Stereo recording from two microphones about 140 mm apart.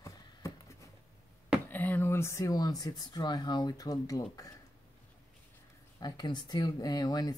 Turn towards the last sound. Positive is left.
turn(degrees=30)  # may be behind; listen again after turning